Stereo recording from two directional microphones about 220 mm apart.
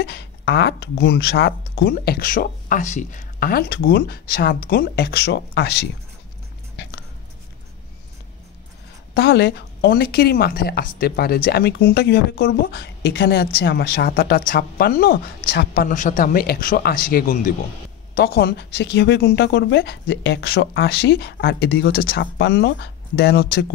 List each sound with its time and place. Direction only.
0.0 s speech: 50° left (ahead or behind)
9.1 s speech: 50° left (ahead or behind)